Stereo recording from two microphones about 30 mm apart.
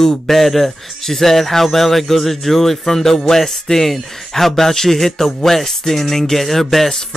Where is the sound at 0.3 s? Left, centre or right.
Centre.